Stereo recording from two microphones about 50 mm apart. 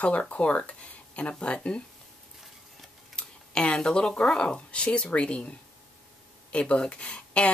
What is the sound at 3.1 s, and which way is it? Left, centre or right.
Speech, centre.